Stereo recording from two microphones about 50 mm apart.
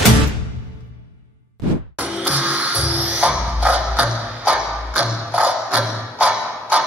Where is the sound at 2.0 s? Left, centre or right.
Right.